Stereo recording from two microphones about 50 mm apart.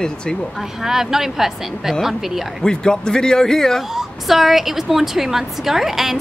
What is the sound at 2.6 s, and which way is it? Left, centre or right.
Speech, centre.